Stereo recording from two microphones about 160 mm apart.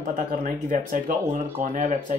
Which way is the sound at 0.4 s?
55° right (ahead or behind).